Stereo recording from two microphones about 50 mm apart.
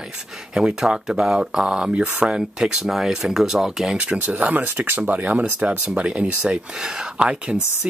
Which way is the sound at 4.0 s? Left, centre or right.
Right.